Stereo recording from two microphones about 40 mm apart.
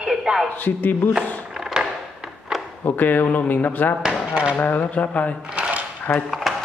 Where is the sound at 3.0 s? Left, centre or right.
Left.